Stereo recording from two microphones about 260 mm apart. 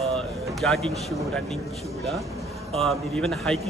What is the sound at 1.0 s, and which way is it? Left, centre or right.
Speech, centre.